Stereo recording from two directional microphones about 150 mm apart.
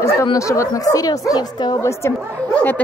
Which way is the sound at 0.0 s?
20° left (ahead or behind).